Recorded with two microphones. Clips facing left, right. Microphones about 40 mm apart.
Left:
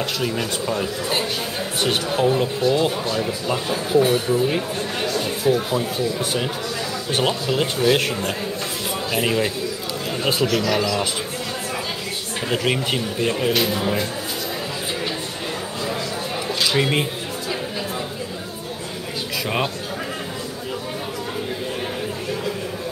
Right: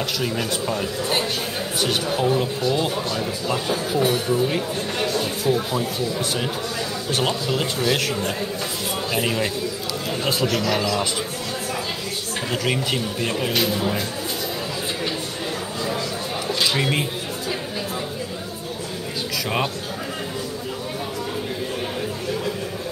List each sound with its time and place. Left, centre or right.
0.0 s a man's voice: centre
2.2 s a man's voice: centre
3.9 s a man's voice: centre
4.3 s a man's voice: centre
5.1 s a sound: centre
5.7 s a man's voice: centre
7.2 s a man's voice: centre
9.1 s a man's voice: centre
12.4 s a man's voice: centre
16.4 s a sound: centre